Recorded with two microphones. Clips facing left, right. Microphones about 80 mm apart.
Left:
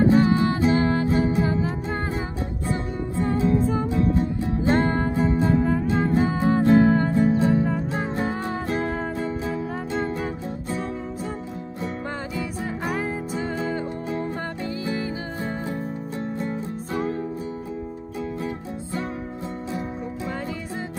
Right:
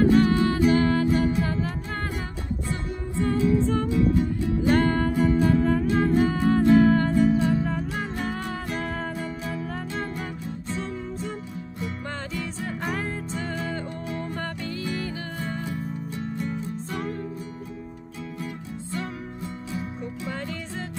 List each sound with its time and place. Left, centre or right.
0.0 s music: left
3.3 s music: left
4.6 s music: left
12.4 s music: centre